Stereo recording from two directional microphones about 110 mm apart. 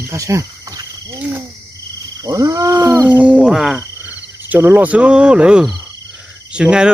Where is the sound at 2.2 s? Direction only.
35° right (ahead or behind).